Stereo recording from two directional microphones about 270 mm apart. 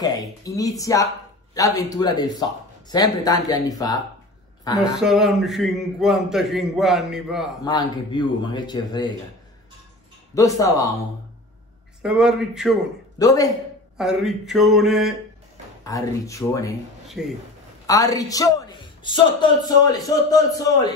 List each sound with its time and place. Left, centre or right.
0.4 s a man's voice: centre
5.0 s a man's voice: centre
7.6 s a man's voice: centre
10.3 s a man's voice: centre
12.0 s a man's voice: centre
13.2 s a man's voice: centre
13.9 s a man's voice: centre
15.8 s a man's voice: centre
17.2 s a man's voice: centre
17.8 s a man's voice: centre